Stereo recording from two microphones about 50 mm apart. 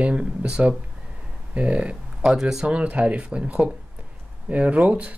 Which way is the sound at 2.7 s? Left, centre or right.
Right.